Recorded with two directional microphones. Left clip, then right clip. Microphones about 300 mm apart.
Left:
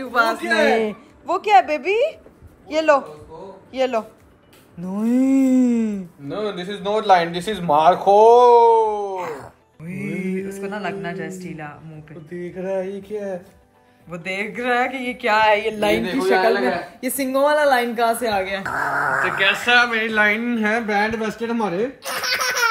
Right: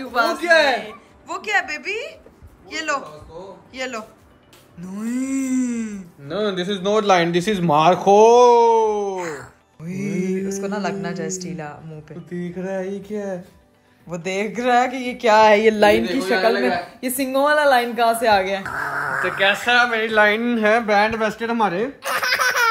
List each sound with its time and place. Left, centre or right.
0.0 s a man's voice: centre
6.2 s a man's voice: right
9.2 s speech: centre
9.8 s a man's voice: right
10.6 s speech: centre
12.3 s a man's voice: right
14.2 s speech: centre
15.5 s a man's voice: right
16.4 s a woman's voice: centre
19.4 s a man's voice: right
21.0 s a woman's voice: centre
21.6 s baby laughter: centre